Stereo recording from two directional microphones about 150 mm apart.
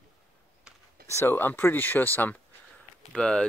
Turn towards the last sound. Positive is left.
turn(degrees=5)  # may be behind; listen again after turning